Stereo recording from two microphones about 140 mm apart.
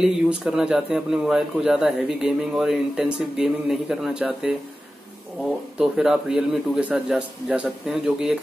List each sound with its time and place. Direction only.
0.0 s a man's voice: 5° right (ahead or behind)
5.8 s a man's voice: 5° right (ahead or behind)